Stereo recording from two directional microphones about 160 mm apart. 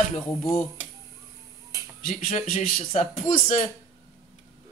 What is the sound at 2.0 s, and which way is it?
Speech, 50° left (ahead or behind).